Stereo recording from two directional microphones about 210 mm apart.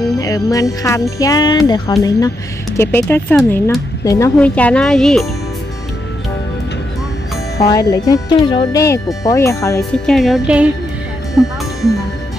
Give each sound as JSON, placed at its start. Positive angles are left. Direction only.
{"t": 0.2, "sound": "music", "side_deg": 15}
{"t": 7.5, "sound": "music", "side_deg": 15}
{"t": 9.9, "sound": "music", "side_deg": 0}